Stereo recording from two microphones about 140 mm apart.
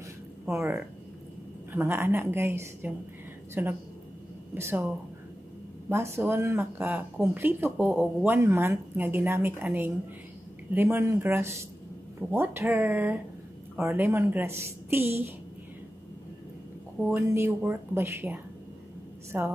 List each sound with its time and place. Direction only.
0.5 s speech: 20° right (ahead or behind)
17.1 s speech: 15° right (ahead or behind)